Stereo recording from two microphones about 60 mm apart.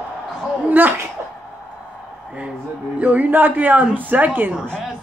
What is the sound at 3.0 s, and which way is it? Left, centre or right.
A woman's voice, right.